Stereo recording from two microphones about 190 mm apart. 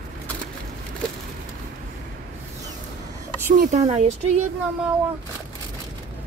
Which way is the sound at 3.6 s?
40° right (ahead or behind).